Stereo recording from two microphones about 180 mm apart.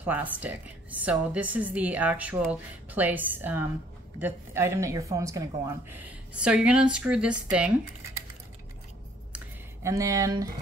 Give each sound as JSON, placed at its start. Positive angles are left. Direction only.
{"t": 0.0, "sound": "speech", "side_deg": -10}
{"t": 9.8, "sound": "speech", "side_deg": -15}